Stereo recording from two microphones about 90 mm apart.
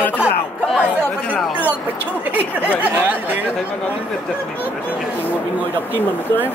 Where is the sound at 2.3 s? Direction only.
20° right (ahead or behind).